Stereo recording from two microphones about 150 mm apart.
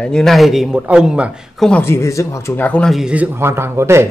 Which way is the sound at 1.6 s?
15° left (ahead or behind).